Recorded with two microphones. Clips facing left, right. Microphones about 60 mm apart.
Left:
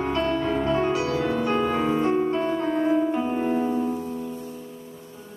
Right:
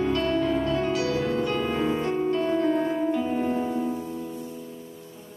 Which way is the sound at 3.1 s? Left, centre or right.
Left.